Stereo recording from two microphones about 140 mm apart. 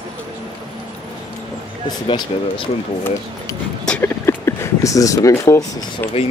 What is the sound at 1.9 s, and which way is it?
Speech, 35° left (ahead or behind).